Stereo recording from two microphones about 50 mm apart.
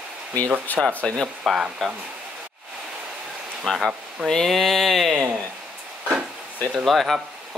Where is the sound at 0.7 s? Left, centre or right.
Left.